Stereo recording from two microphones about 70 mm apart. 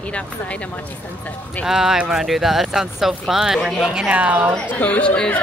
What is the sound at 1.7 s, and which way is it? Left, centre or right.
Speech, centre.